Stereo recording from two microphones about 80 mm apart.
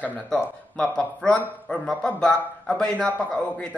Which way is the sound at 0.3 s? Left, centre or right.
Centre.